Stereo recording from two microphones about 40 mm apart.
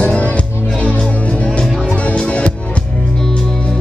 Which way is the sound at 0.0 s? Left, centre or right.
Left.